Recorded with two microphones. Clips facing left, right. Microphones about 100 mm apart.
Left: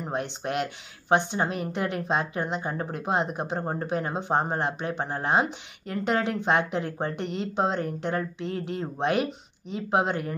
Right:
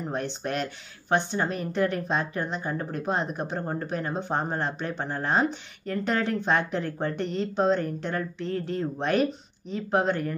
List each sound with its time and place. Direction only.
0.0 s speech: 20° left (ahead or behind)